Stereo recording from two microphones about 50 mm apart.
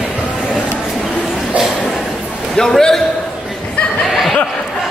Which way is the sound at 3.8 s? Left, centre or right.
Left.